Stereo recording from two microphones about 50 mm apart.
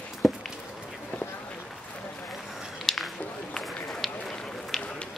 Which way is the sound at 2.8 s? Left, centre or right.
Centre.